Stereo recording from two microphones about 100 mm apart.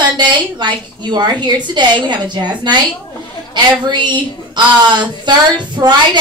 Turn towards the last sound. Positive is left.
turn(degrees=-45)  # may be behind; listen again after turning